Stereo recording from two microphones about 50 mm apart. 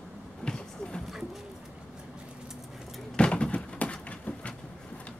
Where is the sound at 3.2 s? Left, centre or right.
Left.